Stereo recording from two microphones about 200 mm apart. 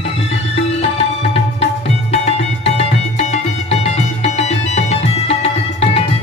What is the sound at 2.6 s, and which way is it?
Music, 35° left (ahead or behind).